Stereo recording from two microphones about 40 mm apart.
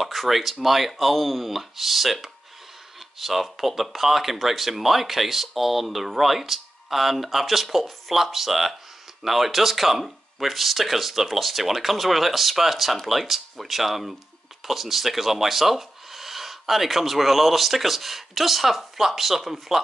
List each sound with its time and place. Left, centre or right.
0.0 s speech: centre
3.2 s speech: centre